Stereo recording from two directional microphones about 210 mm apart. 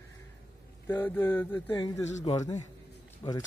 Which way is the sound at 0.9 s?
15° left (ahead or behind).